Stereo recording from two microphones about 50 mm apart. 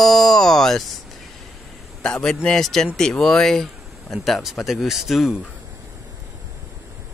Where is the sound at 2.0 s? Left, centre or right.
Centre.